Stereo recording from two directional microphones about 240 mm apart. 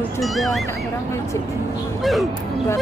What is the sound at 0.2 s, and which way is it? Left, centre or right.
Speech, centre.